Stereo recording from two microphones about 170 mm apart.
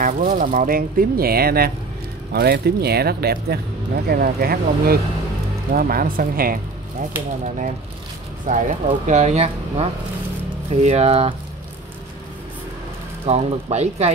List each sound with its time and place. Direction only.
0.0 s speech: 50° right (ahead or behind)
8.5 s speech: 45° right (ahead or behind)
13.2 s speech: 40° right (ahead or behind)